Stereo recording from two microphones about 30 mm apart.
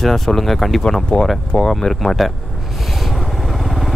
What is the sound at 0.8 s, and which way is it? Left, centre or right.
Speech, left.